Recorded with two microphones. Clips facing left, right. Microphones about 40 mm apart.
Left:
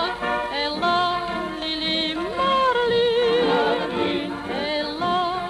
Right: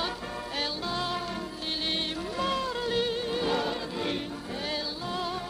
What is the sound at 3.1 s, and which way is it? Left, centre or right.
Music, left.